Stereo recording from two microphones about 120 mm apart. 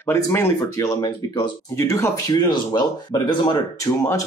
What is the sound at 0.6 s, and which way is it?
Speech, 35° left (ahead or behind).